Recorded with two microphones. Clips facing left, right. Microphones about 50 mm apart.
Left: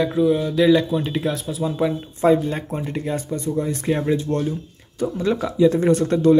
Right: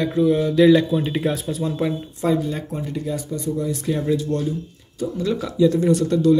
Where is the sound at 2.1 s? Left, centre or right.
Left.